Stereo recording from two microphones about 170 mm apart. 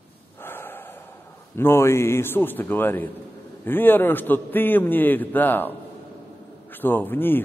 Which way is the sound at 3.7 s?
10° left (ahead or behind).